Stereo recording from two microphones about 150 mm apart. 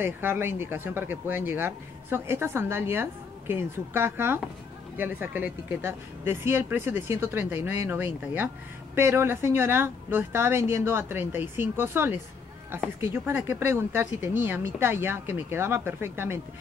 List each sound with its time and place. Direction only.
0.0 s speech: 15° right (ahead or behind)